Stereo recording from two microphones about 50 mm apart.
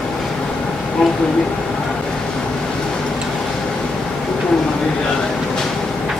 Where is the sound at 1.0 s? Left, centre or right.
Centre.